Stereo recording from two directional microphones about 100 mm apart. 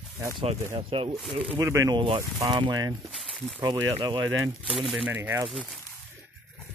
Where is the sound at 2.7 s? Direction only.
40° right (ahead or behind).